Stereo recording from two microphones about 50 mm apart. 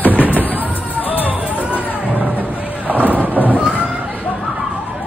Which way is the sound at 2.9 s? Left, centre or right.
Right.